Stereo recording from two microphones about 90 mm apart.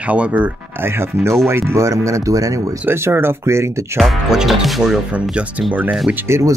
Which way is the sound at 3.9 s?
Centre (ahead or behind).